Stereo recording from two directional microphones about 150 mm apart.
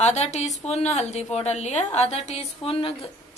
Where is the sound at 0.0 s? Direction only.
50° left (ahead or behind).